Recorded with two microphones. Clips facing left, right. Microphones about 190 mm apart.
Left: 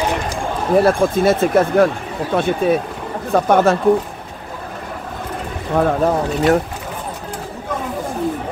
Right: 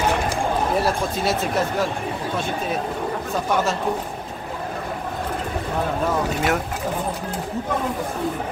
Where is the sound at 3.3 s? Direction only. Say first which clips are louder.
Left 10 dB; 55° left (ahead or behind).